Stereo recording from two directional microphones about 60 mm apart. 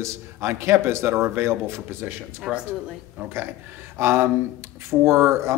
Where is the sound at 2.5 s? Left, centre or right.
Centre.